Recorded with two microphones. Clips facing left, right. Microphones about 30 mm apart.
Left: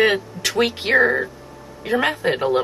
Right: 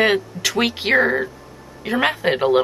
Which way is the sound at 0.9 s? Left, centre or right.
Centre.